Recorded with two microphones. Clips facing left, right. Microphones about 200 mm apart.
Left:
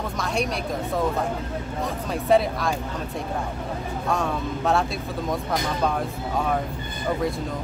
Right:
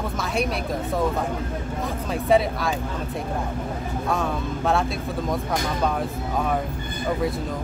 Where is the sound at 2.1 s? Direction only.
Centre (ahead or behind).